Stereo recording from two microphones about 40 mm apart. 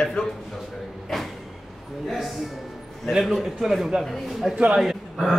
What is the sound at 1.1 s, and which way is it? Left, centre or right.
Speech, centre.